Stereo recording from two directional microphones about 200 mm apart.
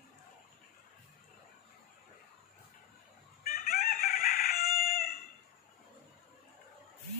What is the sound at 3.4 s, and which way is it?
Chicken, 45° left (ahead or behind).